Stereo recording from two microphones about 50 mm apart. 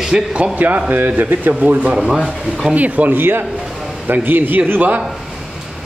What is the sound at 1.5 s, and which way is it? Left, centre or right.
Speech, right.